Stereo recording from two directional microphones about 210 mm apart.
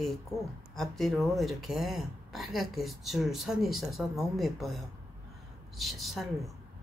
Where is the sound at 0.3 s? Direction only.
Centre (ahead or behind).